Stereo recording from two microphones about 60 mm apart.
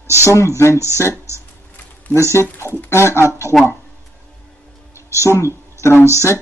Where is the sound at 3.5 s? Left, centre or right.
Centre.